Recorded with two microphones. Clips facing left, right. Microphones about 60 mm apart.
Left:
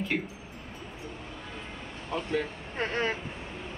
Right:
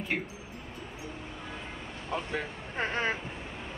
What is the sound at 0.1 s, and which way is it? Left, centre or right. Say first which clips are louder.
Speech: left 1 dB; centre.